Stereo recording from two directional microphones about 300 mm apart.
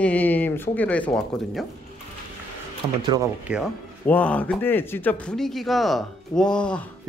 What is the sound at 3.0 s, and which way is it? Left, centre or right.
Speech, centre.